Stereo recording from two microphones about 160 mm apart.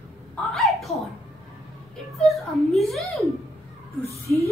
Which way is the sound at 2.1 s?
Centre (ahead or behind).